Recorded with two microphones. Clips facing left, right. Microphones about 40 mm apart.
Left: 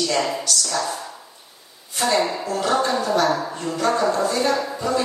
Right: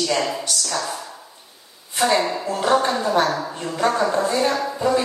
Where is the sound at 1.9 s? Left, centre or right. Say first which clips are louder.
Right 1 dB; right.